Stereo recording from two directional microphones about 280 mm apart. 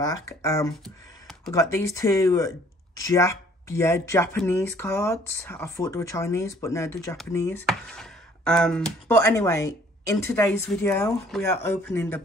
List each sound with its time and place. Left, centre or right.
0.0 s speech: centre